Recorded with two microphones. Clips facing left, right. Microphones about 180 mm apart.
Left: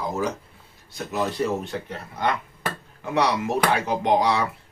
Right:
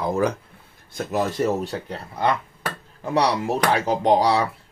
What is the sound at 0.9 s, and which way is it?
Speech, 45° right (ahead or behind).